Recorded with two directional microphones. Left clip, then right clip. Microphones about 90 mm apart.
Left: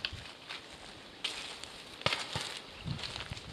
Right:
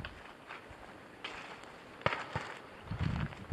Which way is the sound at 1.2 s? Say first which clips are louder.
Left 5 dB; 10° left (ahead or behind).